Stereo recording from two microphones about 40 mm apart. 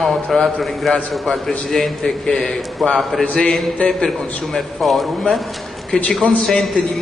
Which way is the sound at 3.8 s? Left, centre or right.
Left.